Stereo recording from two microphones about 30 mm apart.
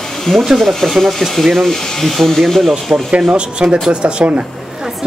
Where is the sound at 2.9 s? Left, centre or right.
Right.